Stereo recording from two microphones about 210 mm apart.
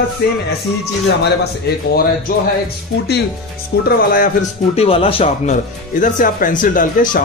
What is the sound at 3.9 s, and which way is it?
Speech, 45° left (ahead or behind).